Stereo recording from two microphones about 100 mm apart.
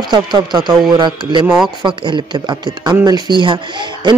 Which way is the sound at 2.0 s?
50° right (ahead or behind).